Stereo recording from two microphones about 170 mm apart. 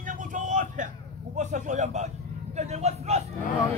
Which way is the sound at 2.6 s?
40° right (ahead or behind).